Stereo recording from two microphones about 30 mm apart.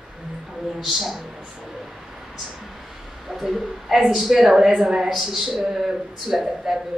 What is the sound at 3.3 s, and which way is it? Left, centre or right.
Speech, centre.